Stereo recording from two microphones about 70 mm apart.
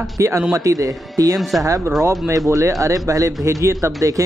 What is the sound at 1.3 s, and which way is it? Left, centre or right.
Speech, centre.